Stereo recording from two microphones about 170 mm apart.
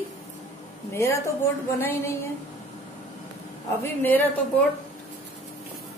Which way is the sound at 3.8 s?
10° left (ahead or behind).